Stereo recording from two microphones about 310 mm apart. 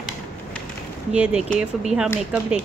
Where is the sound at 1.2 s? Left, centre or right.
Centre.